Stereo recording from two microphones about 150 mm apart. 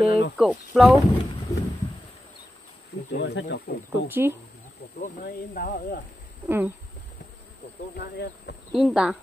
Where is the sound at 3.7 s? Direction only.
85° left.